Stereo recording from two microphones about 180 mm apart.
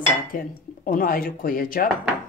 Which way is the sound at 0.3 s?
50° left (ahead or behind).